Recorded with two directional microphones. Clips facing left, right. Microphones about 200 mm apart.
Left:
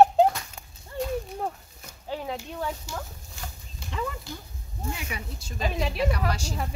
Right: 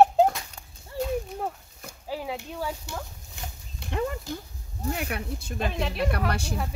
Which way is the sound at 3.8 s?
60° right (ahead or behind).